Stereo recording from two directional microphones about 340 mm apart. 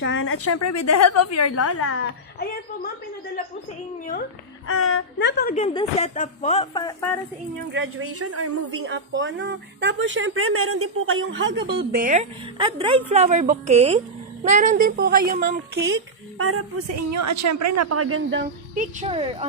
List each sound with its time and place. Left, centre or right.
0.0 s a woman's voice: left
2.3 s a woman's voice: left
4.0 s a woman's voice: left
4.6 s speech: left
5.4 s a woman's voice: left
7.7 s a woman's voice: right
17.1 s a woman's voice: right; by 19.4 s centre